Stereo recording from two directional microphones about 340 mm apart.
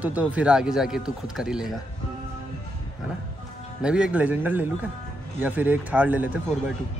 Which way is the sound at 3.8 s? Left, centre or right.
Centre.